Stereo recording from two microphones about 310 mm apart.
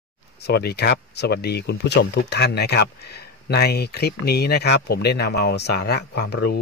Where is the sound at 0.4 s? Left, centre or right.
Left.